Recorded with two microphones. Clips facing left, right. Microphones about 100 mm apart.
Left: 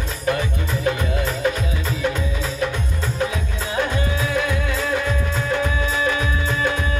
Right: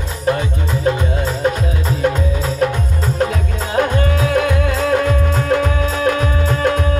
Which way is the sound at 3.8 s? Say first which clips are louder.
Right 7 dB; 55° right (ahead or behind).